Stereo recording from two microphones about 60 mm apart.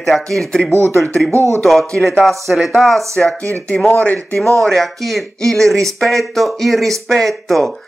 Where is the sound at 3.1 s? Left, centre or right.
Centre.